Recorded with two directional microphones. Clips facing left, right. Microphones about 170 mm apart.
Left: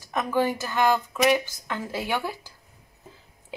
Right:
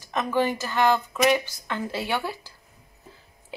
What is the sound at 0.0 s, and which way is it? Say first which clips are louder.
Speech: even; 15° left (ahead or behind).